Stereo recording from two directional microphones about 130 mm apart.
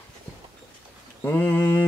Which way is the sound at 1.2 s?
15° left (ahead or behind).